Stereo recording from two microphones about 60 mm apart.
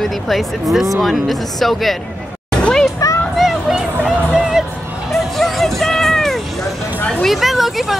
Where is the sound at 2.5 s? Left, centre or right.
Centre.